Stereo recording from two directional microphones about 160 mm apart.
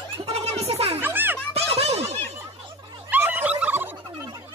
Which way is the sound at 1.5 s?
40° right (ahead or behind).